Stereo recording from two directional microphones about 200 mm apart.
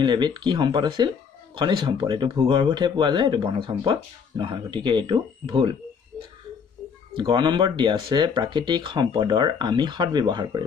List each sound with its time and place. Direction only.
0.0 s speech: 20° right (ahead or behind)
7.2 s speech: 25° right (ahead or behind)